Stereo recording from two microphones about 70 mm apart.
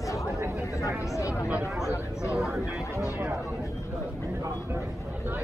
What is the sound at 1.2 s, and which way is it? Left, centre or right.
Speech, left.